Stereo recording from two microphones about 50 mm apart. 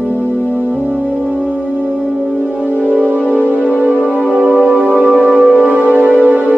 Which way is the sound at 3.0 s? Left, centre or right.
Right.